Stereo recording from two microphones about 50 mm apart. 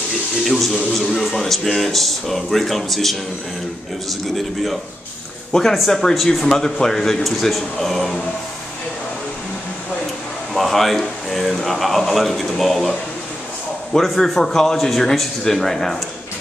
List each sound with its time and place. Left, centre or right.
0.4 s speech: centre
5.5 s a man's voice: centre
10.5 s speech: centre
13.9 s a man's voice: centre